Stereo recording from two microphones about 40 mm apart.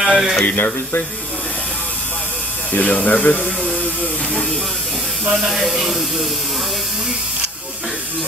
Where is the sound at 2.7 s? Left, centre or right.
Left.